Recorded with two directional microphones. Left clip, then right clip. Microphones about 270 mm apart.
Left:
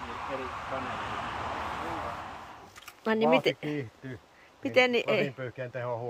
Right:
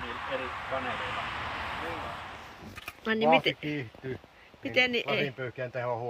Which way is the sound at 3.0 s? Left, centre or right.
Centre.